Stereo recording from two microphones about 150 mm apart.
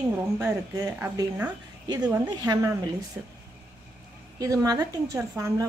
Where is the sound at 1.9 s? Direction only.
25° right (ahead or behind).